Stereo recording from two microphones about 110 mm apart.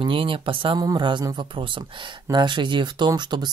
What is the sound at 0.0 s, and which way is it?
Speech, 50° right (ahead or behind).